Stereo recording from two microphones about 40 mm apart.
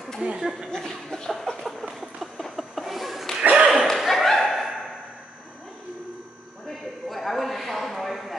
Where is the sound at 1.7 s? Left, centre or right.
Centre.